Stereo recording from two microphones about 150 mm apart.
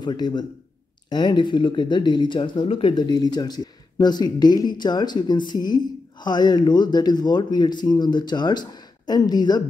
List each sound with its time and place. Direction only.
0.0 s speech: 30° left (ahead or behind)